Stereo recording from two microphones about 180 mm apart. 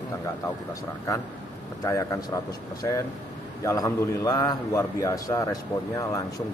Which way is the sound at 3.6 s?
20° left (ahead or behind).